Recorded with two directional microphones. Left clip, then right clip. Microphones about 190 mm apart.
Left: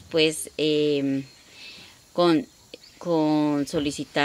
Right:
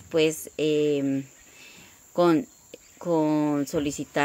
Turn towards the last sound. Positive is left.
turn(degrees=0)  # may be behind; listen again after turning